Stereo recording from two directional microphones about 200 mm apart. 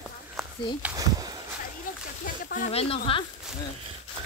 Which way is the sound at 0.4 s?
Centre (ahead or behind).